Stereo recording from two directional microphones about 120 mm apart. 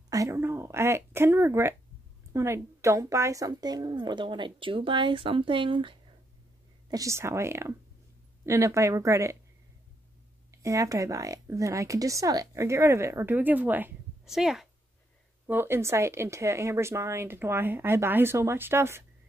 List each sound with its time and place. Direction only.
0.1 s a woman's voice: 25° right (ahead or behind); by 5.9 s 45° right (ahead or behind)
6.9 s speech: 25° right (ahead or behind)
10.5 s speech: 25° right (ahead or behind)
14.2 s speech: 5° right (ahead or behind)
15.4 s speech: 15° right (ahead or behind)